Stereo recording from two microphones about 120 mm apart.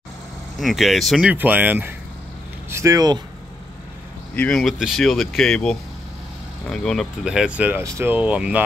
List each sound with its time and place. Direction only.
0.6 s speech: centre (ahead or behind)
1.3 s speech: 15° right (ahead or behind)
2.7 s speech: 25° right (ahead or behind)
4.4 s speech: 5° left (ahead or behind)